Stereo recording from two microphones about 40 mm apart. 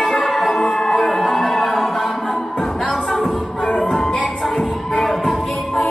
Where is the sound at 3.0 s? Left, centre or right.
Centre.